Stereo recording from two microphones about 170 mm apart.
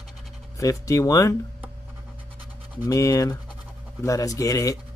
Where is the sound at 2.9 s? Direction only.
20° left (ahead or behind).